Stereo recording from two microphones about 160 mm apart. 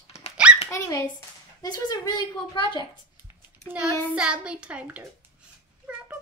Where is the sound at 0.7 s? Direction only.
20° left (ahead or behind).